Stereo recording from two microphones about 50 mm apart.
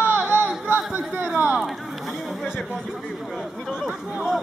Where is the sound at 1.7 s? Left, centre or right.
Centre.